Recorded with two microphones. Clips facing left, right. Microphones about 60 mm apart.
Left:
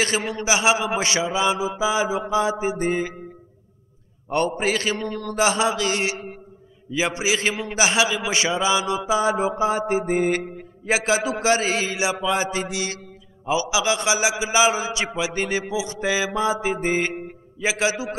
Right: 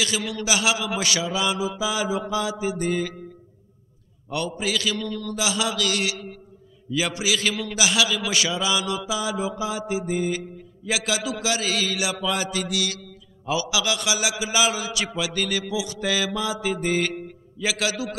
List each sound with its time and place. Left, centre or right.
0.0 s a man's voice: left
4.3 s a man's voice: left
10.9 s a man's voice: left